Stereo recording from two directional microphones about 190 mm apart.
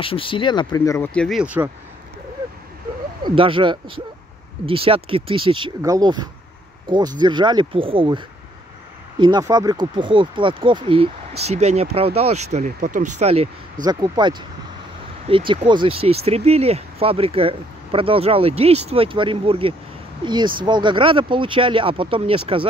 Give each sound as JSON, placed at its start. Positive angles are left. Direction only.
{"t": 0.0, "sound": "speech", "side_deg": 25}
{"t": 3.3, "sound": "speech", "side_deg": -25}
{"t": 9.2, "sound": "speech", "side_deg": -20}
{"t": 13.8, "sound": "speech", "side_deg": -20}